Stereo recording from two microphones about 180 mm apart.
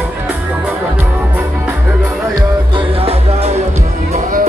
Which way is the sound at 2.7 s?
30° right (ahead or behind).